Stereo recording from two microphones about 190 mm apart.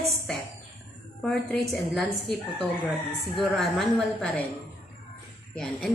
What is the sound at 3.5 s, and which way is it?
Speech, centre (ahead or behind).